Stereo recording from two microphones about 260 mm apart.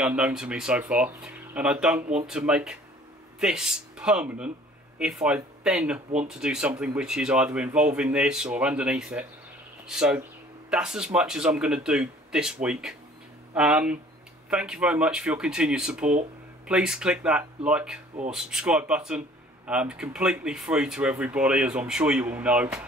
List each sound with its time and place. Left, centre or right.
0.0 s speech: centre